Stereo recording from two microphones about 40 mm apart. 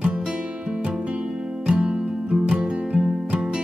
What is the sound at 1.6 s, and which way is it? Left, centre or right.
Music, right.